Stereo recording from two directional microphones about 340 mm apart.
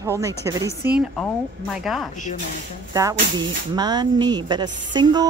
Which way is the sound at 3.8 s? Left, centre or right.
Centre.